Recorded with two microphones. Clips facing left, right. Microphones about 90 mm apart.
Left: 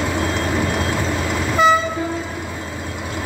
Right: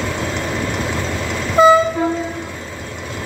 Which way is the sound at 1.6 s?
35° right (ahead or behind).